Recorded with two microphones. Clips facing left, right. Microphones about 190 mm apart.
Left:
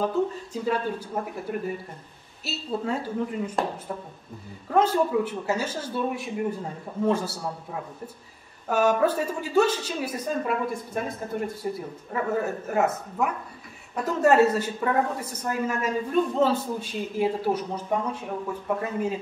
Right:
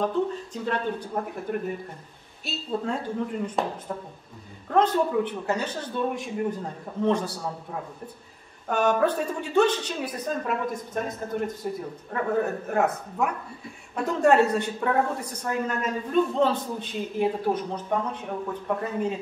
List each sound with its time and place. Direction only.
0.0 s a woman's voice: 5° left (ahead or behind)
4.6 s a woman's voice: 5° left (ahead or behind)